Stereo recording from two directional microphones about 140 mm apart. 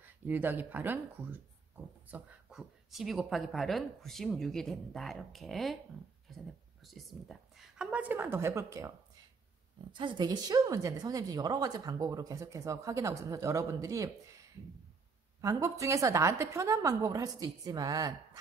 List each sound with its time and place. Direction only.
0.0 s speech: 15° right (ahead or behind)
9.9 s a woman's voice: 35° right (ahead or behind)
15.4 s a woman's voice: 20° right (ahead or behind)